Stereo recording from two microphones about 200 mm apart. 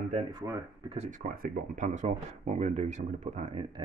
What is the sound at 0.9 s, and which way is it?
Speech, 30° right (ahead or behind).